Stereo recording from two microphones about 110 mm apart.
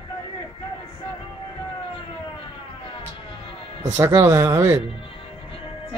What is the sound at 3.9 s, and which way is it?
Speech, 25° right (ahead or behind).